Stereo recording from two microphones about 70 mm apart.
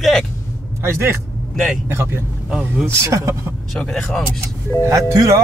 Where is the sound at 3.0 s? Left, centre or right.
Right.